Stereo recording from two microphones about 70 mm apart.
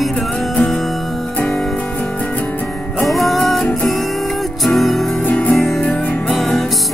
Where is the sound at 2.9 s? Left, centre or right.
Centre.